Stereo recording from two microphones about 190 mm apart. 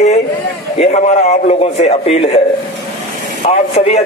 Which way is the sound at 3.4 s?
35° left (ahead or behind).